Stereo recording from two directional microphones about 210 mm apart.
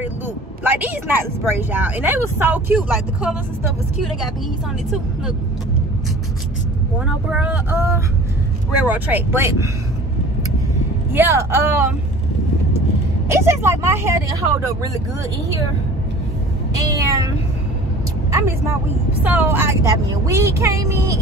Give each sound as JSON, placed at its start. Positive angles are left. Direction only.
{"t": 0.7, "sound": "speech", "side_deg": -10}
{"t": 7.1, "sound": "speech", "side_deg": -5}
{"t": 11.1, "sound": "speech", "side_deg": -10}
{"t": 13.3, "sound": "speech", "side_deg": -10}
{"t": 16.7, "sound": "a sound", "side_deg": -15}
{"t": 19.2, "sound": "speech", "side_deg": -10}